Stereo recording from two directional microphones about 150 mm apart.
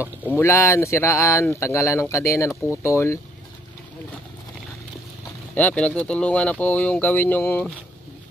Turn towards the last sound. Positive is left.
turn(degrees=10)  # may be behind; listen again after turning